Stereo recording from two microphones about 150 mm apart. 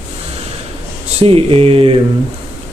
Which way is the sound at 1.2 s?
40° right (ahead or behind).